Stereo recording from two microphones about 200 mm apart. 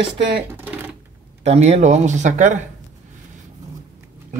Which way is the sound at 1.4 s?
35° right (ahead or behind).